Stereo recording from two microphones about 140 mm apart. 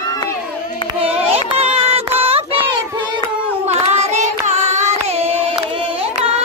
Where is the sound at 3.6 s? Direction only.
50° right (ahead or behind).